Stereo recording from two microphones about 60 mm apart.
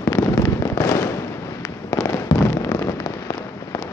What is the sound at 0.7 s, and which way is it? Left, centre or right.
Fireworks, left.